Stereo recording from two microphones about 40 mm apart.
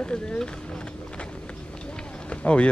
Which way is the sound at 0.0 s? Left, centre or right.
Left.